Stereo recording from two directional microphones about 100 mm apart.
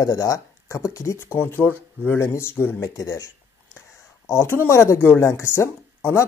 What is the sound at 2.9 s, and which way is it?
Speech, 35° left (ahead or behind).